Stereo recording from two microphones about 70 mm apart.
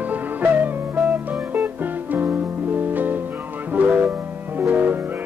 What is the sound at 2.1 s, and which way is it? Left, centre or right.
Music, right.